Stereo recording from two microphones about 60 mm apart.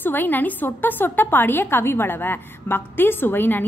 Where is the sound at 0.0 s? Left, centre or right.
Left.